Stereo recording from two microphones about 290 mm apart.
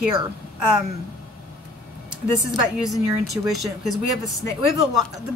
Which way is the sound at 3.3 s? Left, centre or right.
Centre.